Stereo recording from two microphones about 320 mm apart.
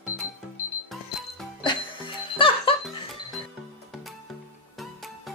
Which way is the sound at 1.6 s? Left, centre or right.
Centre.